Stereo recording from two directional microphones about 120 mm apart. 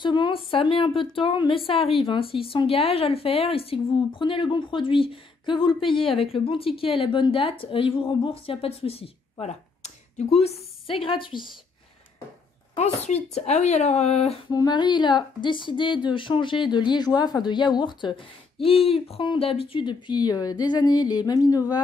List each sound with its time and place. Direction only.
0.0 s a woman's voice: 40° left (ahead or behind)
12.7 s speech: 65° left (ahead or behind)
14.5 s a woman's voice: 35° left (ahead or behind)
18.6 s a woman's voice: 50° left (ahead or behind); by 21.7 s 30° left (ahead or behind)